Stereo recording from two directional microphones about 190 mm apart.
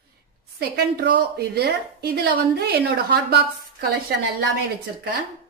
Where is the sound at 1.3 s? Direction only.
55° right (ahead or behind).